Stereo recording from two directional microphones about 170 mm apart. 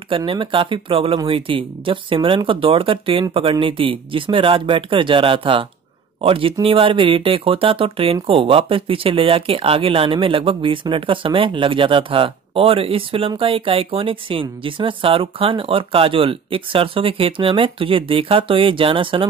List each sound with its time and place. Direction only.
0.1 s speech: 30° right (ahead or behind)